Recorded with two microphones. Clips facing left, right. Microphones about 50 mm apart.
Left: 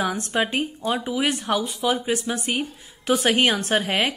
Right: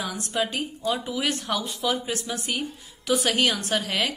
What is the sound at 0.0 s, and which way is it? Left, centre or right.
A woman's voice, left.